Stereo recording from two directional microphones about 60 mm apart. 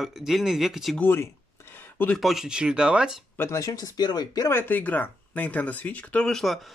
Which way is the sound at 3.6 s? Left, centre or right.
Left.